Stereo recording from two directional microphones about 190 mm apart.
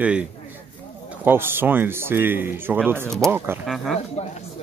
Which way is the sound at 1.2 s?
10° right (ahead or behind).